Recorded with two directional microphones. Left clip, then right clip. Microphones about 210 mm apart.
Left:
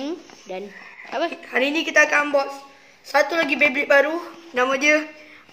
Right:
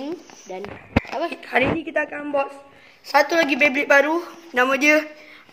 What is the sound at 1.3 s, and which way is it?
A woman's voice, 50° right (ahead or behind).